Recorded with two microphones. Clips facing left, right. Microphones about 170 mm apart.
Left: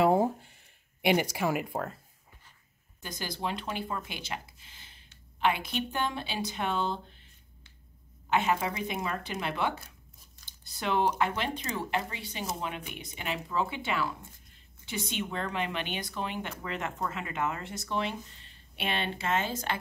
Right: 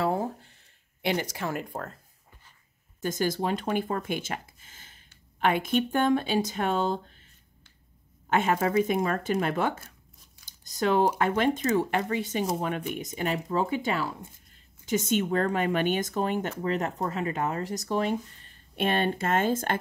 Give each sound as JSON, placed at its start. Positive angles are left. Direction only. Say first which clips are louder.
{"t": 0.0, "sound": "a sound", "louder": "left 4 dB", "side_deg": 15}
{"t": 1.0, "sound": "speech", "louder": "left 2 dB", "side_deg": 10}
{"t": 3.0, "sound": "speech", "louder": "right 9 dB", "side_deg": -45}
{"t": 8.3, "sound": "speech", "louder": "right 3 dB", "side_deg": -45}